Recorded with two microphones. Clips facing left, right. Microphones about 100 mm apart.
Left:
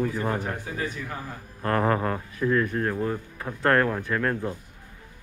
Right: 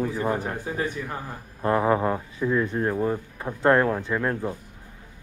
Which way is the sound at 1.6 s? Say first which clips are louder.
Right 2 dB; 10° right (ahead or behind).